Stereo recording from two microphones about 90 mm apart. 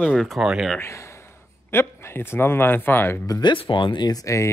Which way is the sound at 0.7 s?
30° left (ahead or behind).